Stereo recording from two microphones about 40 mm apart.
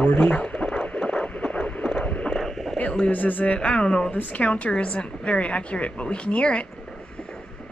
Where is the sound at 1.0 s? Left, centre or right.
Left.